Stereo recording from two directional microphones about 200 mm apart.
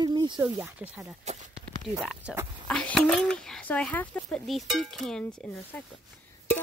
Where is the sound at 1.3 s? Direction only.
35° right (ahead or behind).